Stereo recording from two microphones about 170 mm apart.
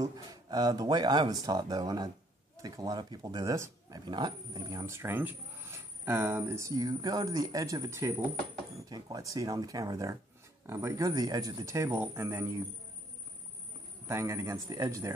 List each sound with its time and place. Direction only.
0.0 s speech: 20° right (ahead or behind)
14.0 s speech: 15° right (ahead or behind)